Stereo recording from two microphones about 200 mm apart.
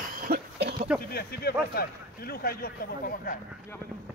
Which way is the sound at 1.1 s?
50° left (ahead or behind).